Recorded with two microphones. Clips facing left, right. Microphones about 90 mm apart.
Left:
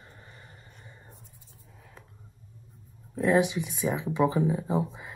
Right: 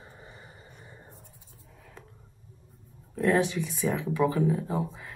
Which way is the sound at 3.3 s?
15° left (ahead or behind).